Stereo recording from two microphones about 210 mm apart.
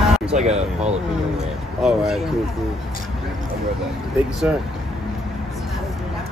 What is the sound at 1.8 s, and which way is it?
Speech, centre (ahead or behind).